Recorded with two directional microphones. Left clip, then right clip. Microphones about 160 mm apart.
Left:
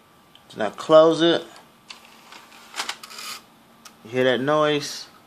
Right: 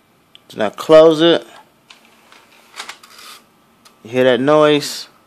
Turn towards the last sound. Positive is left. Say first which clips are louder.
# right 9 dB
turn(degrees=-55)  # may be behind; listen again after turning